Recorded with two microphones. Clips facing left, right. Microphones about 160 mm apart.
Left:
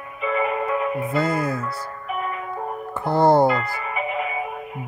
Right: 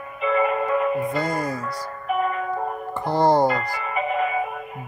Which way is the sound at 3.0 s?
5° left (ahead or behind).